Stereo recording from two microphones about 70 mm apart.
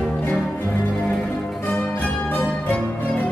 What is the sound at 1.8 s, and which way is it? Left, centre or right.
Zither, left.